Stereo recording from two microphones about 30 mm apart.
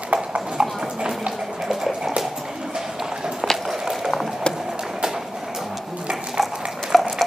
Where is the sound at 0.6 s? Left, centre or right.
Right.